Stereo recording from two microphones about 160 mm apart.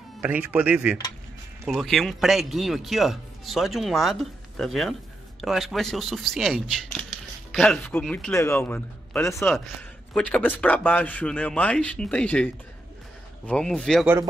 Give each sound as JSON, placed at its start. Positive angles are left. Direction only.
{"t": 0.2, "sound": "speech", "side_deg": -10}
{"t": 8.3, "sound": "a man's voice", "side_deg": 15}
{"t": 9.5, "sound": "a man's voice", "side_deg": 5}
{"t": 13.5, "sound": "speech", "side_deg": 5}